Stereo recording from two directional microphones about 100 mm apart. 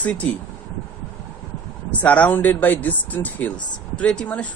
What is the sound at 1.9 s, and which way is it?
Speech, 15° left (ahead or behind).